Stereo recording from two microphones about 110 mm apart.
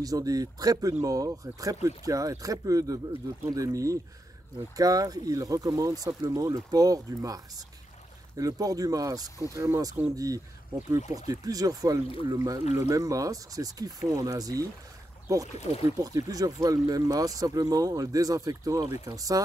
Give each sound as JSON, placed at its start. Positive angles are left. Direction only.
{"t": 0.0, "sound": "speech", "side_deg": -35}